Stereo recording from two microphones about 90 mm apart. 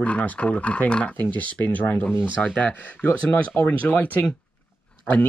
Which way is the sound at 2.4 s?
15° left (ahead or behind).